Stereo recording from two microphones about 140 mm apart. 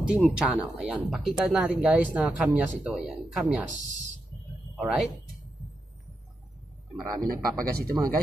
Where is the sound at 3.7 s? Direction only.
60° right (ahead or behind).